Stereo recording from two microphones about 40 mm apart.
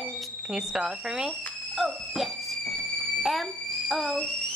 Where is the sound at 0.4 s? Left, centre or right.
Centre.